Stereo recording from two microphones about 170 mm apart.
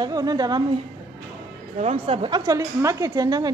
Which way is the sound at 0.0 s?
25° right (ahead or behind).